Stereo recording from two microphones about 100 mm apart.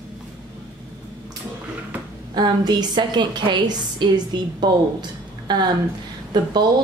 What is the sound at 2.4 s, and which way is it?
A woman's voice, 45° right (ahead or behind).